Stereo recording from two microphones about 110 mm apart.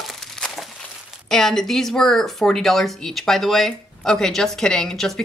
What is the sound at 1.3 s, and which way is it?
Speech, 5° left (ahead or behind).